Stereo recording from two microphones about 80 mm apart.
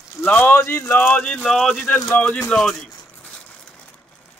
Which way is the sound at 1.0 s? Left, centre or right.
Left.